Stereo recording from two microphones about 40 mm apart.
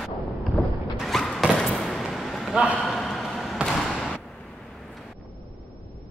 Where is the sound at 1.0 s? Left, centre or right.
Centre.